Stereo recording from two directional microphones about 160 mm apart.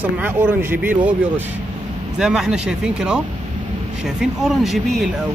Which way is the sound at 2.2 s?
5° right (ahead or behind).